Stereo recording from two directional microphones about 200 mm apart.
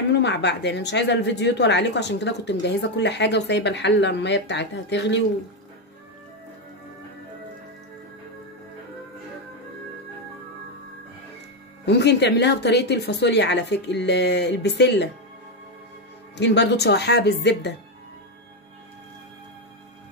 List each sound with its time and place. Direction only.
0.1 s a woman's voice: 60° left (ahead or behind)
11.8 s a woman's voice: 60° left (ahead or behind)
16.3 s a woman's voice: 60° left (ahead or behind)